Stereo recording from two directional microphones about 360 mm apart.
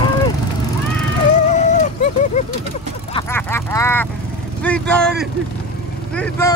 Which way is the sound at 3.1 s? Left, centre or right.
Centre.